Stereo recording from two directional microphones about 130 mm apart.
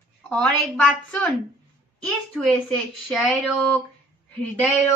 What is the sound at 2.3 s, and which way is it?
Speech, 5° left (ahead or behind).